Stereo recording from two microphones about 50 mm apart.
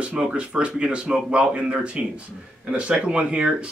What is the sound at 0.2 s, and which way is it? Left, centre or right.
Speech, right.